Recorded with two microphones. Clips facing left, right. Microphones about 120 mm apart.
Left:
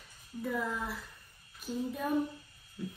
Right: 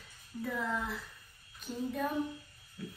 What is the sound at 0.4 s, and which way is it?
Speech, centre (ahead or behind).